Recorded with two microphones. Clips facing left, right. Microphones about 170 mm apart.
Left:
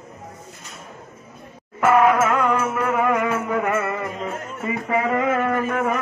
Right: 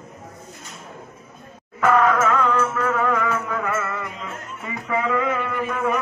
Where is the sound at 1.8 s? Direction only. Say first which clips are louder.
Left 2 dB; 10° left (ahead or behind).